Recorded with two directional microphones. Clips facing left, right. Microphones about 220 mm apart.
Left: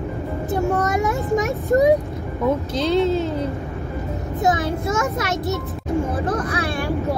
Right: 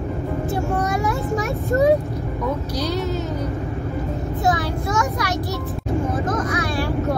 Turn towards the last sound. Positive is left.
turn(degrees=30)  # may be behind; listen again after turning